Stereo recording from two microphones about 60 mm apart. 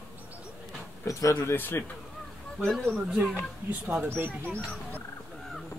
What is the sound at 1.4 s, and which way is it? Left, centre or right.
Speech, left.